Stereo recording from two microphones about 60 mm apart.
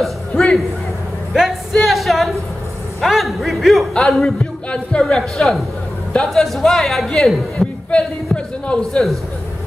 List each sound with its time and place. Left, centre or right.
0.0 s music: centre
1.3 s a sound: centre
3.0 s a woman's voice: centre
4.6 s a man's voice: centre
5.1 s a woman's voice: centre
8.6 s a woman's voice: centre